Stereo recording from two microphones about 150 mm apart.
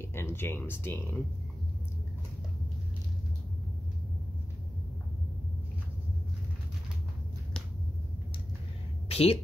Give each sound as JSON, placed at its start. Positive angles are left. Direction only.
{"t": 0.0, "sound": "speech", "side_deg": 15}
{"t": 9.1, "sound": "speech", "side_deg": 40}